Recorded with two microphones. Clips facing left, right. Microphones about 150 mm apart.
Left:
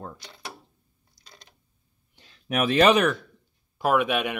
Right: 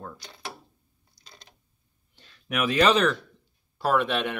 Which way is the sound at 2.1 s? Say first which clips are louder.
Left 3 dB; 20° left (ahead or behind).